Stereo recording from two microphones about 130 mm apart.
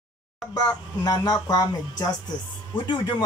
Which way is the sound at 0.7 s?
30° left (ahead or behind).